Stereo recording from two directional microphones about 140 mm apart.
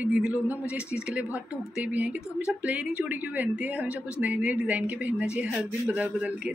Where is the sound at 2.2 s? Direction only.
20° left (ahead or behind).